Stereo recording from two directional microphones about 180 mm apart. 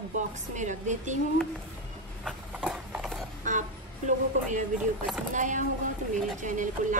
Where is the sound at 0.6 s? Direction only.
40° right (ahead or behind).